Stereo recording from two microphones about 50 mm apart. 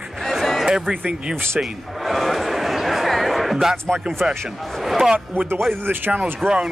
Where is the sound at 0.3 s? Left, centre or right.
Centre.